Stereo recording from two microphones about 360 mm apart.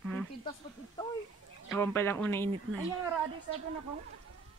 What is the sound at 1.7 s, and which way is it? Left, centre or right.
Speech, centre.